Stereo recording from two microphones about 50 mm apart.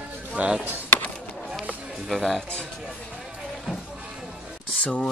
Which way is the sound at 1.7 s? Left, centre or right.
Right.